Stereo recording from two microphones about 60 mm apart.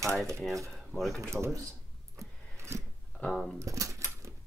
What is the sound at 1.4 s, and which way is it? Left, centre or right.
Speech, right.